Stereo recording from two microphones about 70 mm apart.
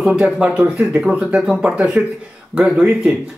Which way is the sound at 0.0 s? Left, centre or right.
Centre.